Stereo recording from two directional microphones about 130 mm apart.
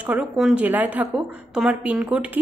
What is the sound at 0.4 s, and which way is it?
Speech, 10° right (ahead or behind).